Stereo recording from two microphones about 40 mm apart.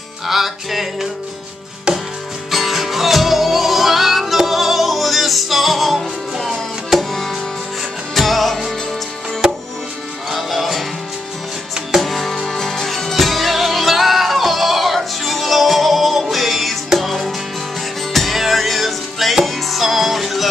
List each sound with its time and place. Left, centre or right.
0.3 s music: centre
1.9 s music: centre
2.5 s music: centre
9.4 s music: centre
10.3 s music: centre
12.0 s music: centre